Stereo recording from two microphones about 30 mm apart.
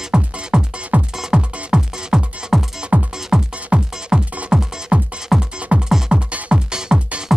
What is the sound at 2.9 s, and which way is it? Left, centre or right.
Music, right.